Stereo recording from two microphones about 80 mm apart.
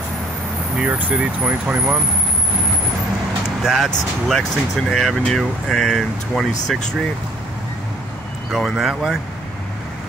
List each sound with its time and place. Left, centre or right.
0.7 s speech: centre
3.6 s speech: centre
8.5 s speech: centre